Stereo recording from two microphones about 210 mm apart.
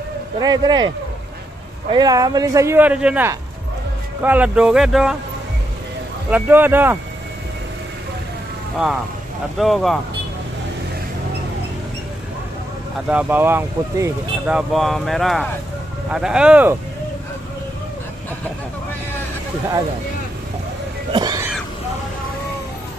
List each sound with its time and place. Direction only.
0.4 s a man's voice: 20° right (ahead or behind); by 5.1 s 5° right (ahead or behind)
6.3 s a man's voice: 10° right (ahead or behind)
9.6 s speech: centre (ahead or behind)
13.1 s speech: 5° right (ahead or behind)
21.1 s a sound: 20° right (ahead or behind)